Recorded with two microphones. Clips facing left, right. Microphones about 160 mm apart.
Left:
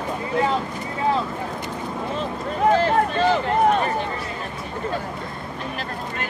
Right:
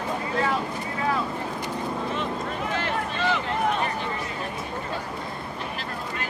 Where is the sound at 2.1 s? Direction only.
35° left (ahead or behind).